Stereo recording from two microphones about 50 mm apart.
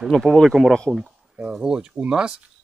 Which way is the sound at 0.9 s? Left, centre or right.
Centre.